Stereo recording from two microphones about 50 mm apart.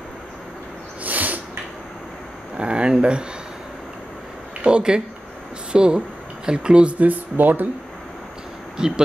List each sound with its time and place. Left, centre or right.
1.0 s snort: right
2.5 s speech: centre
4.6 s speech: centre
7.3 s speech: right
8.7 s speech: centre